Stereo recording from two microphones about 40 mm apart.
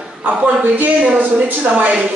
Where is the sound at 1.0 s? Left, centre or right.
Right.